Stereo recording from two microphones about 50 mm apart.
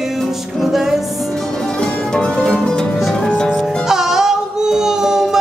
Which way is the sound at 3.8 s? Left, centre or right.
Centre.